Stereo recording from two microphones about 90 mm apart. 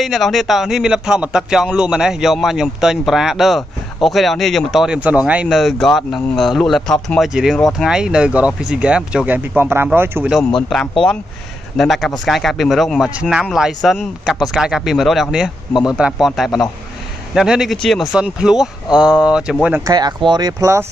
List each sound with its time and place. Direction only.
0.0 s speech: centre (ahead or behind)
5.5 s speech: centre (ahead or behind)
7.2 s speech: 5° right (ahead or behind); by 10.2 s 25° right (ahead or behind)
11.7 s speech: 5° left (ahead or behind)
13.1 s speech: 10° right (ahead or behind)
14.2 s speech: 10° left (ahead or behind)
14.5 s speech: 5° right (ahead or behind)
18.1 s speech: 10° right (ahead or behind)
19.8 s speech: 50° right (ahead or behind)